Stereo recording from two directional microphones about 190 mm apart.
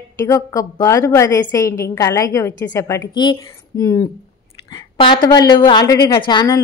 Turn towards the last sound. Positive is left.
turn(degrees=20)  # may be behind; listen again after turning